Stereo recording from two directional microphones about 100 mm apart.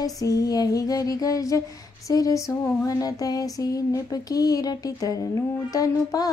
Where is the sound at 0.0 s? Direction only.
35° left (ahead or behind).